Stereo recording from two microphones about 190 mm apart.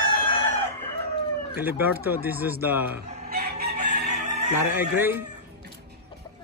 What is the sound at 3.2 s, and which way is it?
Chicken, 55° right (ahead or behind).